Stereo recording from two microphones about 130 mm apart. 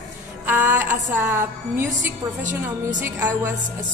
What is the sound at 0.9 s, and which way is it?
Speech, 20° right (ahead or behind).